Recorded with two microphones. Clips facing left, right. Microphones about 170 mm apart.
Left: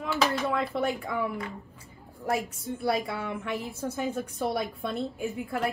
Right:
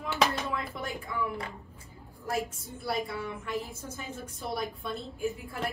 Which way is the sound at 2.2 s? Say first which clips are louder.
Left 4 dB; 65° left (ahead or behind).